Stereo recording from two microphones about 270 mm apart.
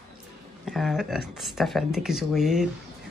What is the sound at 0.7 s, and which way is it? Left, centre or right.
Speech, centre.